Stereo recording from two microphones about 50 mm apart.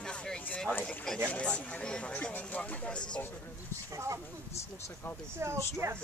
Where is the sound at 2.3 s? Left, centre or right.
Left.